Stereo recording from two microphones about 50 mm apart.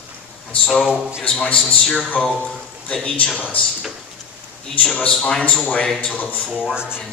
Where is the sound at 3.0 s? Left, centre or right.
Centre.